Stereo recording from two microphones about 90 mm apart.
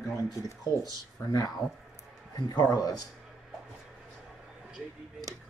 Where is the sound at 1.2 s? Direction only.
20° left (ahead or behind).